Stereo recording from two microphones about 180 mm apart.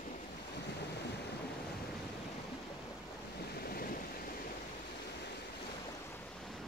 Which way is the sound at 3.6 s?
55° left (ahead or behind).